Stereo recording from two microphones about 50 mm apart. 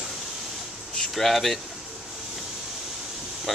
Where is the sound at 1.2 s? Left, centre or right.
Centre.